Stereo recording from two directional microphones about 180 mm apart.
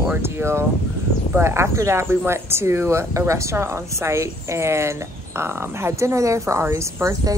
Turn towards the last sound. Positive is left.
turn(degrees=-20)  # may be behind; listen again after turning